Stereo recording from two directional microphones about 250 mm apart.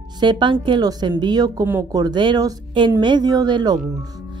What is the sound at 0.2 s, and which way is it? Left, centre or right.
A woman's voice, centre.